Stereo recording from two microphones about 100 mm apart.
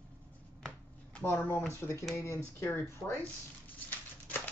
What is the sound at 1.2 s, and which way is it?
Speech, 20° left (ahead or behind).